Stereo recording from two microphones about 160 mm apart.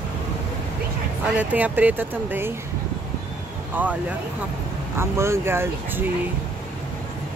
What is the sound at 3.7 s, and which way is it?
Speech, 10° right (ahead or behind).